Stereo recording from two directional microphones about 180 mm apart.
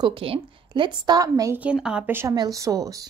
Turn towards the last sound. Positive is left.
turn(degrees=-20)  # may be behind; listen again after turning